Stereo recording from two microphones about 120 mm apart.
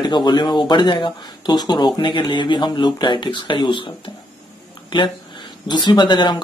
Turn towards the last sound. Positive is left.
turn(degrees=40)  # may be behind; listen again after turning